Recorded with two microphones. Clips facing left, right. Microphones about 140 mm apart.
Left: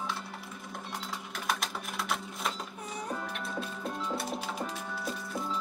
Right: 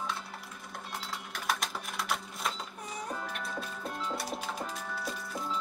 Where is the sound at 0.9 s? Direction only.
Centre (ahead or behind).